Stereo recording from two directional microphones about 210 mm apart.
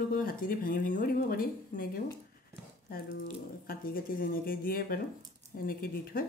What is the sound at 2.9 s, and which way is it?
Speech, 45° left (ahead or behind).